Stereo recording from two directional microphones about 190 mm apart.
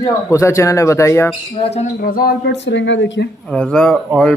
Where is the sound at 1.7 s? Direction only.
45° left (ahead or behind); by 3.3 s 70° left (ahead or behind).